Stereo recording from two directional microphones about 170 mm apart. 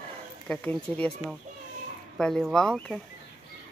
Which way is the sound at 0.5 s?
5° left (ahead or behind).